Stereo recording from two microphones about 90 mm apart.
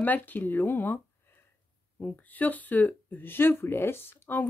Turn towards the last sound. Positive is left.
turn(degrees=25)  # may be behind; listen again after turning